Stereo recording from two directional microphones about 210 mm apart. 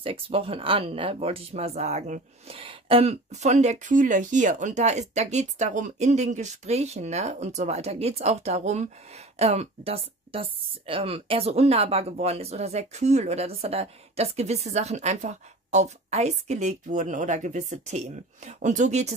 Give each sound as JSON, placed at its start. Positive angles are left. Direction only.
{"t": 0.0, "sound": "speech", "side_deg": -25}